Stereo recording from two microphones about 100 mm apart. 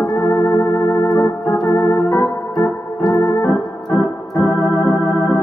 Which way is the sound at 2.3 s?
35° left (ahead or behind).